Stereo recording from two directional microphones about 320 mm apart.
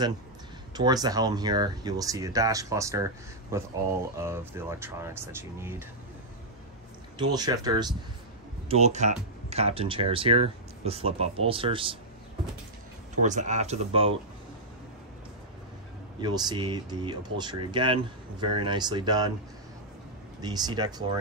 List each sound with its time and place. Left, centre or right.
0.7 s speech: centre
7.2 s speech: centre
13.1 s speech: right
16.2 s speech: centre
20.3 s speech: centre